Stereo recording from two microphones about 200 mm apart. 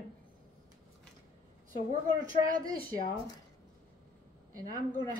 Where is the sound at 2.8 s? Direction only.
25° left (ahead or behind).